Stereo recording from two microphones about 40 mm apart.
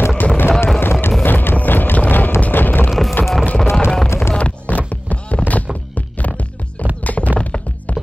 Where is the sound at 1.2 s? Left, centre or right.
Left.